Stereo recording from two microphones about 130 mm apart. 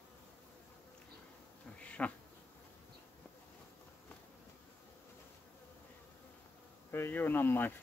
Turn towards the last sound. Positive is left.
turn(degrees=15)  # may be behind; listen again after turning